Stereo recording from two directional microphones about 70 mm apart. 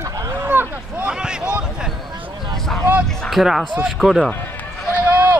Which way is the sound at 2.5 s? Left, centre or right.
Centre.